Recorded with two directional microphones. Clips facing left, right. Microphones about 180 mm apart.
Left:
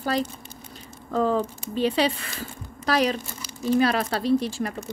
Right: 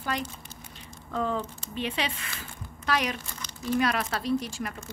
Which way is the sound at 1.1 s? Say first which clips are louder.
Left 7 dB; 35° left (ahead or behind).